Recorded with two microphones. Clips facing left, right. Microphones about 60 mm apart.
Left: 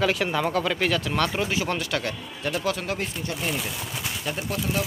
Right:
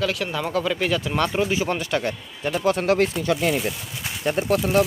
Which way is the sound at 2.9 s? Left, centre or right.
Right.